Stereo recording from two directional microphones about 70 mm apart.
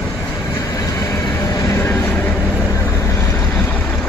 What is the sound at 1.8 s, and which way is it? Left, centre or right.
Vehicle, left.